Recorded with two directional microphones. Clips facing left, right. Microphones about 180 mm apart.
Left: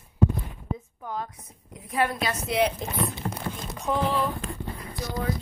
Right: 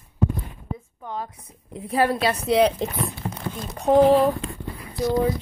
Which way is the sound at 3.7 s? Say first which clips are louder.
Right 11 dB; 35° right (ahead or behind).